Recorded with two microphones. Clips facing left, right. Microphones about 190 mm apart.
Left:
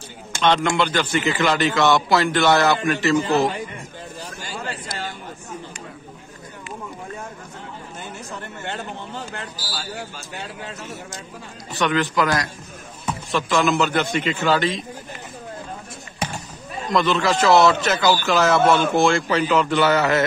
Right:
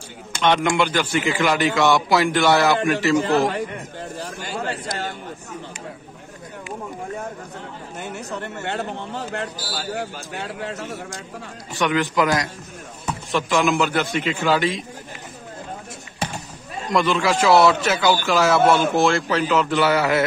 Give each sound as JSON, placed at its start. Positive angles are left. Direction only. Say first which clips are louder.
{"t": 0.4, "sound": "a man's voice", "louder": "even", "side_deg": -15}
{"t": 4.2, "sound": "a sound", "louder": "right 4 dB", "side_deg": -55}
{"t": 8.0, "sound": "speech", "louder": "right 6 dB", "side_deg": -65}
{"t": 11.7, "sound": "a man's voice", "louder": "even", "side_deg": -15}
{"t": 16.9, "sound": "a man's voice", "louder": "even", "side_deg": -10}